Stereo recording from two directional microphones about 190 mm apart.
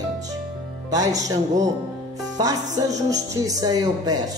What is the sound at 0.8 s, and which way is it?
Speech, 20° right (ahead or behind).